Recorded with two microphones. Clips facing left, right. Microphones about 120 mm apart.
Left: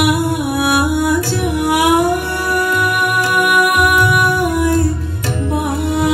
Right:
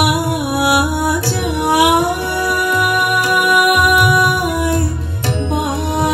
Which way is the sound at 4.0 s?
20° right (ahead or behind).